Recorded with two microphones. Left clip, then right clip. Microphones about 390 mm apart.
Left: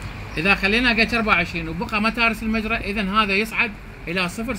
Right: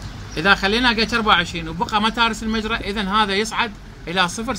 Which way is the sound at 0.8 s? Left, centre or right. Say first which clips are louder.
Right 1 dB; right.